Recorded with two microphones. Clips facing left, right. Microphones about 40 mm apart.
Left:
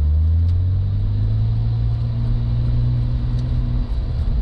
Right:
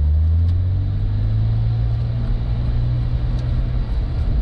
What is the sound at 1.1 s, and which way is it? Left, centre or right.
Vehicle, centre.